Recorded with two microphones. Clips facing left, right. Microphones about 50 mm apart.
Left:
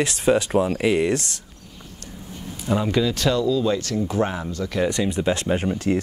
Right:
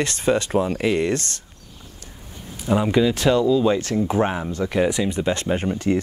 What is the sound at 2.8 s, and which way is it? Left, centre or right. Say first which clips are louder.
Speech: right 3 dB; centre.